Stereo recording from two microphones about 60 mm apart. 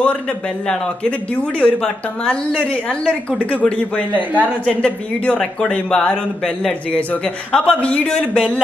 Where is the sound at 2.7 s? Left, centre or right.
Left.